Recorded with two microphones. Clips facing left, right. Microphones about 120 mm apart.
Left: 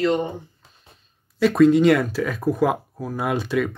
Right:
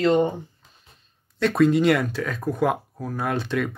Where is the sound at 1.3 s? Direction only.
Centre (ahead or behind).